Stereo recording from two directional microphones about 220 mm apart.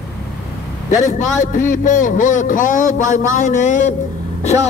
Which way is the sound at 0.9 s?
35° left (ahead or behind).